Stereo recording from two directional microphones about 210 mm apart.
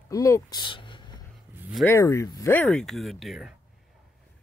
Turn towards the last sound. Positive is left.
turn(degrees=0)  # may be behind; listen again after turning